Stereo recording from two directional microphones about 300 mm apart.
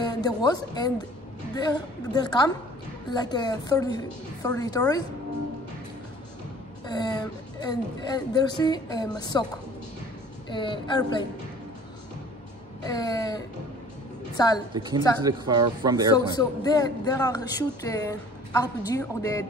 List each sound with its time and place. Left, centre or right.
0.0 s speech: centre
6.9 s speech: centre
12.8 s a woman's voice: centre
14.7 s speech: centre
16.3 s speech: centre